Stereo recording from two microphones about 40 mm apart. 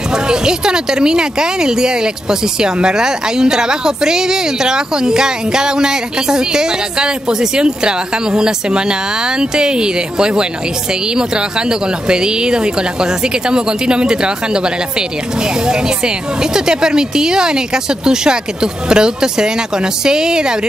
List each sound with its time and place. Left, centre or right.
0.3 s a woman's voice: centre
12.1 s speech: right
16.5 s a woman's voice: centre